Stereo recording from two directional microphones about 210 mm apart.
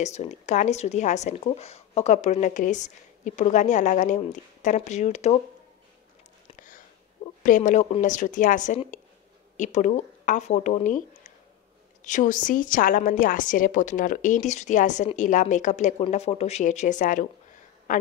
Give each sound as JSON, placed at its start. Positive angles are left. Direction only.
{"t": 0.0, "sound": "speech", "side_deg": 30}
{"t": 7.4, "sound": "speech", "side_deg": 35}